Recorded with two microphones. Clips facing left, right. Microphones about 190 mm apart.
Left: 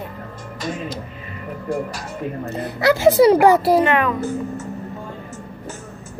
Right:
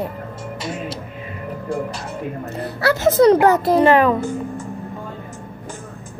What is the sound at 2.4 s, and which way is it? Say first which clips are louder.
A child's voice: left 2 dB; 15° left (ahead or behind).